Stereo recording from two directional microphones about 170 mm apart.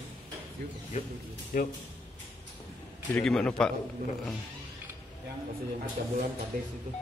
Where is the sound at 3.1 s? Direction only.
Centre (ahead or behind).